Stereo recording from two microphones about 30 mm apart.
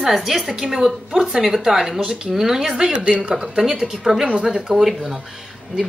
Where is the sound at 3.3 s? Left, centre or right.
Centre.